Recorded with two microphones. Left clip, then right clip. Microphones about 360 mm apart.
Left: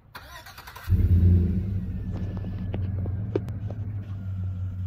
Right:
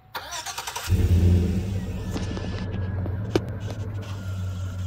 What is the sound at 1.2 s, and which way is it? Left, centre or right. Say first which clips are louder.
Vehicle: right 2 dB; centre.